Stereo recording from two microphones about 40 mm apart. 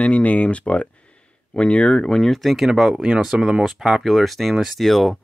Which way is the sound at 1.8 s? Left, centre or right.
Centre.